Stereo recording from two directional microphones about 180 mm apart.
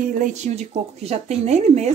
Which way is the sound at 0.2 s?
40° right (ahead or behind).